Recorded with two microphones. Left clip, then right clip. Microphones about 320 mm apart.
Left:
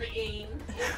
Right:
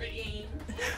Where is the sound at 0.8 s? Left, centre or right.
Centre.